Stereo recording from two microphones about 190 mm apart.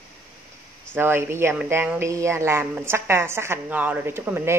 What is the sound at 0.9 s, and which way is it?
Speech, 10° right (ahead or behind).